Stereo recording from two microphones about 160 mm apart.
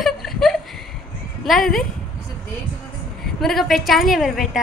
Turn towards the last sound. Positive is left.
turn(degrees=0)  # may be behind; listen again after turning